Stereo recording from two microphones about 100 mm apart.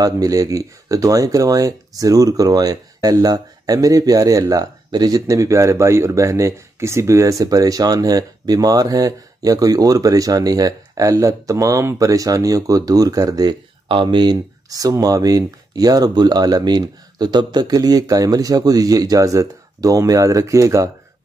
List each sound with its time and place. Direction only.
0.0 s speech: 35° right (ahead or behind)
13.8 s speech: 50° right (ahead or behind); by 20.9 s 35° right (ahead or behind)